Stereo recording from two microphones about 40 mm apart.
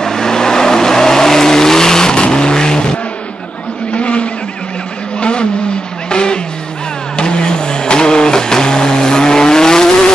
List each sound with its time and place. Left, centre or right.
0.0 s vehicle: centre
3.9 s vehicle: left
6.0 s music: left
7.2 s vehicle: left